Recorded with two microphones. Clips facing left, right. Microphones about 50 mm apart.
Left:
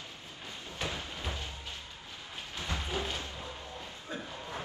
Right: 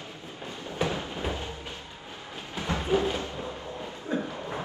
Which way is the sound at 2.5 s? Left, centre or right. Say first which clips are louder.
Right 10 dB; right.